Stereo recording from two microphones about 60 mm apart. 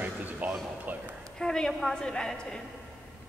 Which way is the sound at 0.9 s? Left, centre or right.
Right.